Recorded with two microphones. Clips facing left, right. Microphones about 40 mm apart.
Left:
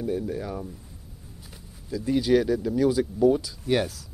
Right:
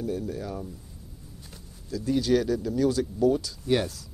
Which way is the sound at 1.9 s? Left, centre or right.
Centre.